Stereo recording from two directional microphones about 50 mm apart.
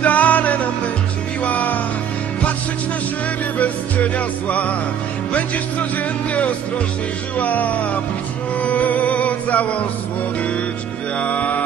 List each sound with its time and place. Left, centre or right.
0.0 s music: left
3.5 s music: left
7.3 s music: left
11.1 s music: left